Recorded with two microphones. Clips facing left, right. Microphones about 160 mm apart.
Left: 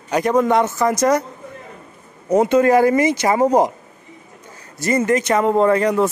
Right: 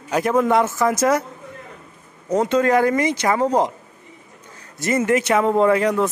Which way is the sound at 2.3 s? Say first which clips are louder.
Left 4 dB; 10° left (ahead or behind).